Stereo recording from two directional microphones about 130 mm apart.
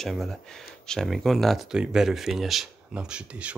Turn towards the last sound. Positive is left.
turn(degrees=-10)  # may be behind; listen again after turning